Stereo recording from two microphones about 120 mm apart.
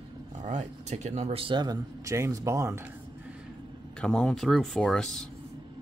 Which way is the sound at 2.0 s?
25° right (ahead or behind).